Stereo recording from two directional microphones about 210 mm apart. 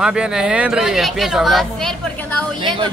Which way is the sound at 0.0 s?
5° right (ahead or behind).